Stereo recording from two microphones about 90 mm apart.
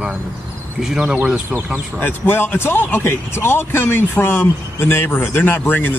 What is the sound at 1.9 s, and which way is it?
Speech, 20° left (ahead or behind).